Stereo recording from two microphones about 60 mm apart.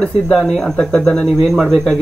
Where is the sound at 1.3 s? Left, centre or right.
Centre.